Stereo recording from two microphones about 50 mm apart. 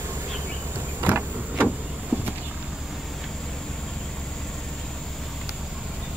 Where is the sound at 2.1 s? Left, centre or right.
Right.